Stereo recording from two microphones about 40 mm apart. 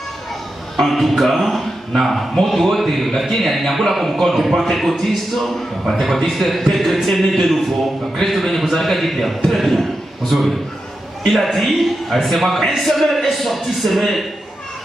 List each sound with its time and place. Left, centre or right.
0.7 s a man's voice: centre